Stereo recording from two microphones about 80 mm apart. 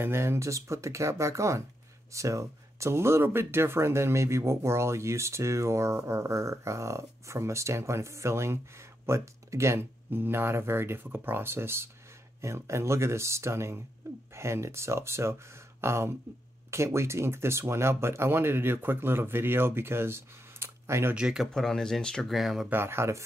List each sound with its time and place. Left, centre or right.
0.0 s speech: right
21.1 s speech: centre
21.5 s speech: centre
22.7 s speech: right